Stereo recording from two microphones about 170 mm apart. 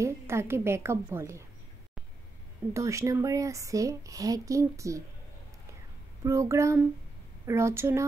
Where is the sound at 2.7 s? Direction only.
15° right (ahead or behind).